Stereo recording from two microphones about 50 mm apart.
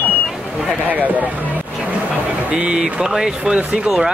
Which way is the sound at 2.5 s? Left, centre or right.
Right.